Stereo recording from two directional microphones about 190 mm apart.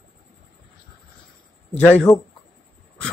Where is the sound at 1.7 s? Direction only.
10° left (ahead or behind).